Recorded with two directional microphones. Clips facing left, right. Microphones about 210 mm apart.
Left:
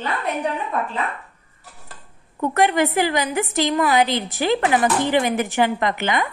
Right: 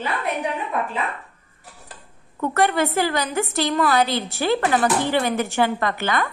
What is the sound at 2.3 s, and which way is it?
A woman's voice, 15° left (ahead or behind).